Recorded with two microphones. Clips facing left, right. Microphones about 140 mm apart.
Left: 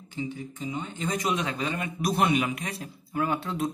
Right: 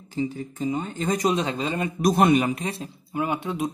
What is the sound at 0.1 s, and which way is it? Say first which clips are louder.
Speech: right 6 dB; 40° right (ahead or behind).